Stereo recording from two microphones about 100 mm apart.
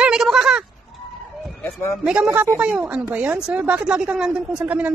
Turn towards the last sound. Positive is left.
turn(degrees=-15)  # may be behind; listen again after turning